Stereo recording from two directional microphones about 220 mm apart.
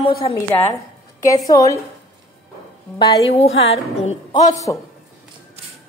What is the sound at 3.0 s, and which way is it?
A woman's voice, 25° left (ahead or behind).